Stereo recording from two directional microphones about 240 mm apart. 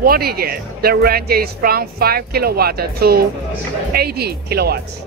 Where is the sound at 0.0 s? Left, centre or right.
Right.